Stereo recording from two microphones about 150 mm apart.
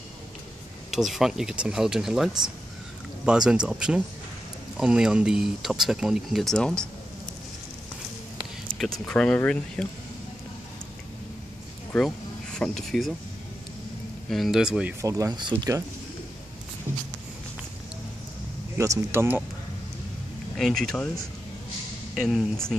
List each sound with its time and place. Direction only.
0.9 s speech: centre (ahead or behind)
8.7 s speech: 5° left (ahead or behind)
11.9 s speech: 5° left (ahead or behind)
14.3 s speech: centre (ahead or behind)
15.0 s speech: 20° right (ahead or behind)
18.8 s speech: 20° right (ahead or behind)
20.5 s speech: centre (ahead or behind)
22.1 s speech: centre (ahead or behind)